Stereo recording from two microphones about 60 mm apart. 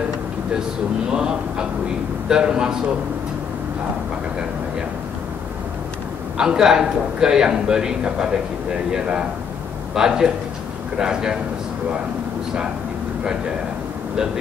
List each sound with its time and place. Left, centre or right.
1.1 s a man's voice: centre
6.3 s a man's voice: centre
9.9 s a man's voice: centre